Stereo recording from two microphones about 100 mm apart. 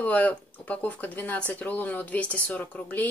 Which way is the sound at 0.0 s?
15° left (ahead or behind).